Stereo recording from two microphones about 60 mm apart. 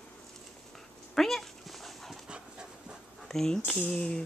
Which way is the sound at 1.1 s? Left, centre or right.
Centre.